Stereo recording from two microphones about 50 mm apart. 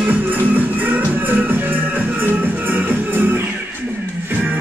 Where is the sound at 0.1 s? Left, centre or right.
Right.